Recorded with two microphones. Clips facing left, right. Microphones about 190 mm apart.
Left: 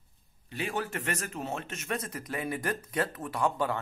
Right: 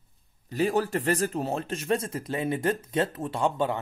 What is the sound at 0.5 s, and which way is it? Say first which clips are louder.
Speech: right 9 dB; 40° right (ahead or behind).